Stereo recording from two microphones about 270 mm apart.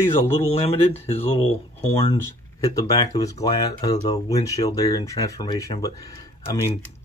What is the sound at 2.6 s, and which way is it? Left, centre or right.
Speech, centre.